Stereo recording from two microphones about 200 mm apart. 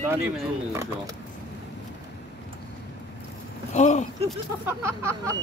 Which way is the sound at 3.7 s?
35° left (ahead or behind).